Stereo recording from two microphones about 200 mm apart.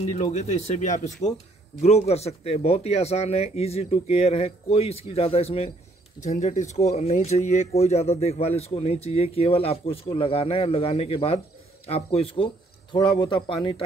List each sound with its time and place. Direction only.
0.0 s a man's voice: 35° left (ahead or behind)